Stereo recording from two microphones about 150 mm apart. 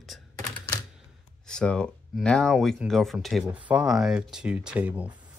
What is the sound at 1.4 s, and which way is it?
Speech, 5° left (ahead or behind).